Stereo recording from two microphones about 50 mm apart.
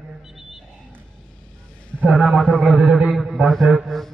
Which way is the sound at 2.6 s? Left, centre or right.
Right.